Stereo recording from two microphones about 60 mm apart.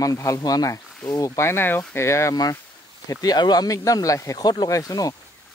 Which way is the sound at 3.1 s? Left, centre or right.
Left.